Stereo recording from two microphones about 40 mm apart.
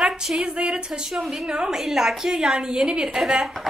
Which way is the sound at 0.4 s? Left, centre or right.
Right.